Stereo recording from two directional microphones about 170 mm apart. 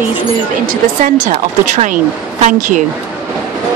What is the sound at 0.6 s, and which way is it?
Speech, 45° right (ahead or behind).